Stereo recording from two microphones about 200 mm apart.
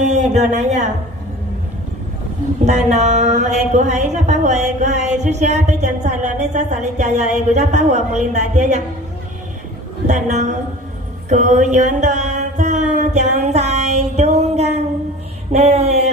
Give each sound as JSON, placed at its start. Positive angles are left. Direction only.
{"t": 0.0, "sound": "speech", "side_deg": -35}
{"t": 2.6, "sound": "a woman's voice", "side_deg": -35}
{"t": 10.0, "sound": "a woman's voice", "side_deg": -35}
{"t": 11.2, "sound": "mantra", "side_deg": -35}
{"t": 15.5, "sound": "a sound", "side_deg": -30}